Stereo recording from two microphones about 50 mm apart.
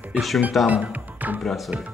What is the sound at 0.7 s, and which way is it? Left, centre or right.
Music, right.